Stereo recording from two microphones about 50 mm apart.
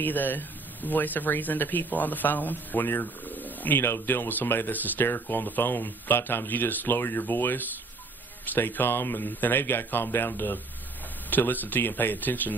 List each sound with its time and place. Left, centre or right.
0.0 s speech: left
3.8 s speech: left